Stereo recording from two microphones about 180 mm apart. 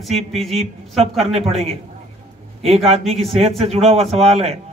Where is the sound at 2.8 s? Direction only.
35° right (ahead or behind).